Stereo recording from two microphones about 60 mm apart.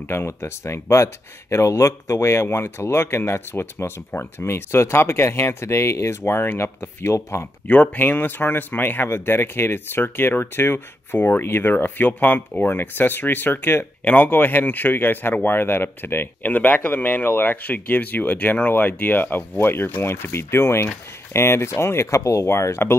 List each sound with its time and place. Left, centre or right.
0.3 s speech: left
7.6 s speech: left